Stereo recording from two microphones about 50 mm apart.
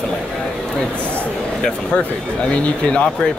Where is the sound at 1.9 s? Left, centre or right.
Left.